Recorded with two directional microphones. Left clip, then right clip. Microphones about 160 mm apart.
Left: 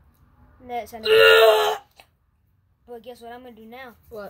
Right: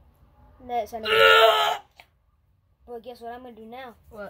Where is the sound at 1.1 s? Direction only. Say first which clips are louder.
Left 3 dB; 50° left (ahead or behind).